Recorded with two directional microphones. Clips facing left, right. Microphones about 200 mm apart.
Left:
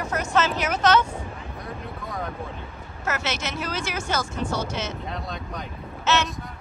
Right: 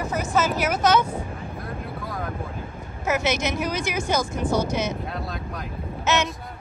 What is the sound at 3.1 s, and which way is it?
Speech, 15° right (ahead or behind).